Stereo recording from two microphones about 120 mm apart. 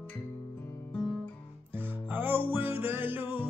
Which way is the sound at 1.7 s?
15° right (ahead or behind).